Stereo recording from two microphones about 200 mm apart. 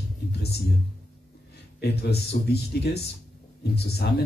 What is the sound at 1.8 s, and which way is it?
Speech, 55° left (ahead or behind).